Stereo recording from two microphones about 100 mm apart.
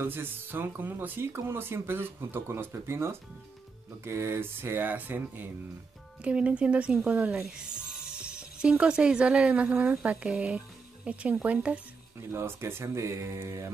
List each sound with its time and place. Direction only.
0.0 s speech: 20° right (ahead or behind)